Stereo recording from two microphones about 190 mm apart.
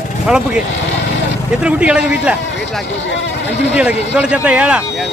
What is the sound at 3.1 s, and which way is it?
Speech, 75° left (ahead or behind).